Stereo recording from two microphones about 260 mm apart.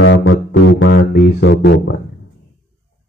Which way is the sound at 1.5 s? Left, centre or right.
Left.